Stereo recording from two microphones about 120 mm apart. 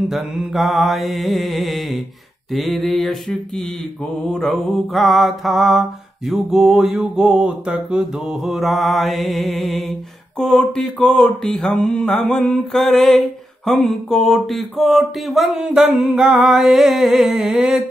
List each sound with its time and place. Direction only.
0.1 s mantra: centre (ahead or behind)